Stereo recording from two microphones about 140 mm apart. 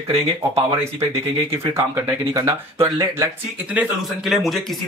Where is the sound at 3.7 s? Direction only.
5° right (ahead or behind).